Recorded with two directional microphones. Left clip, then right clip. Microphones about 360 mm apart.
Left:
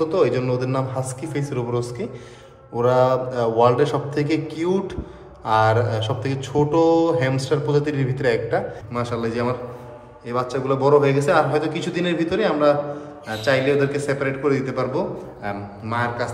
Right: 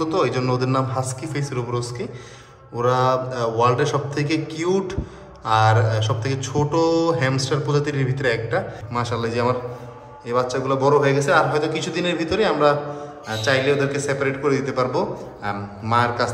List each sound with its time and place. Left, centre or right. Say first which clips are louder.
0.0 s speech: left 2 dB; centre